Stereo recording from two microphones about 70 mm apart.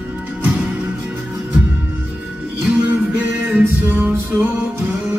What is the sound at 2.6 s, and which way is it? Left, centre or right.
Music, centre.